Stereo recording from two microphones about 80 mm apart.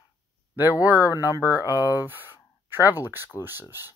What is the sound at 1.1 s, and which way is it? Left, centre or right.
Speech, left.